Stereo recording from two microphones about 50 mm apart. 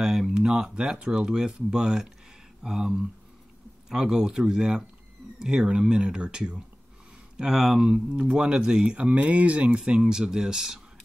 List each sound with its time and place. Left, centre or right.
0.0 s speech: centre
9.8 s speech: centre